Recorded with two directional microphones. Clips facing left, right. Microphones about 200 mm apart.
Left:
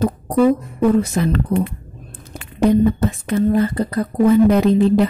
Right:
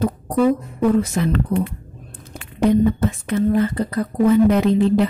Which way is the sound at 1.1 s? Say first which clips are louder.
Left 1 dB; 35° left (ahead or behind).